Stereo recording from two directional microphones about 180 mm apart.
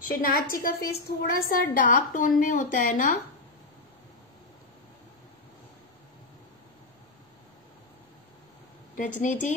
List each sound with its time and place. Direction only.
0.1 s a woman's voice: 55° left (ahead or behind)
8.9 s a woman's voice: 45° left (ahead or behind)